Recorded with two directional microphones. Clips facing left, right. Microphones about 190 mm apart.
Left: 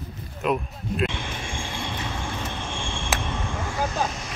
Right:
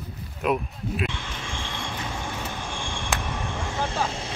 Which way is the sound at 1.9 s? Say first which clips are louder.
Left 1 dB; 5° right (ahead or behind).